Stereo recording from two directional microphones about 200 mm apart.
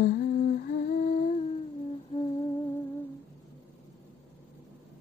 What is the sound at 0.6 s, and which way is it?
Humming, 45° left (ahead or behind).